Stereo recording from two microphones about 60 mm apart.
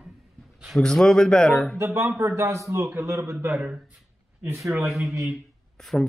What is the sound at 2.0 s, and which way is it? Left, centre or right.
A man's voice, right.